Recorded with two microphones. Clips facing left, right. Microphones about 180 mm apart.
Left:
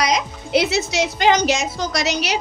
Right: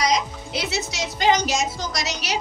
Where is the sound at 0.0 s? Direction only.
65° left (ahead or behind).